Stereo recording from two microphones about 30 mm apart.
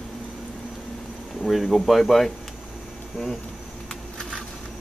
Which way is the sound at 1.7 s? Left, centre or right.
Centre.